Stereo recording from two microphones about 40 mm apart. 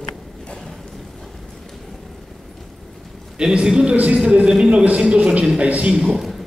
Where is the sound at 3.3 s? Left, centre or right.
Centre.